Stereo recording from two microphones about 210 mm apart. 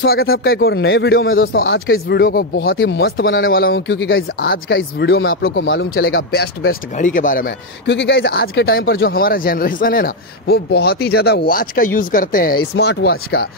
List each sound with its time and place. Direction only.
0.0 s speech: 45° left (ahead or behind)
2.6 s speech: 55° left (ahead or behind)
3.4 s speech: 45° left (ahead or behind)
7.8 s speech: 55° left (ahead or behind)